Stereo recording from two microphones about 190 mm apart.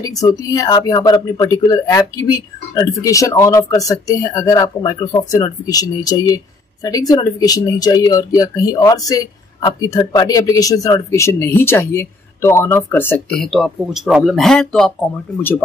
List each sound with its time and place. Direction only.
0.0 s speech: 20° left (ahead or behind); by 14.9 s centre (ahead or behind)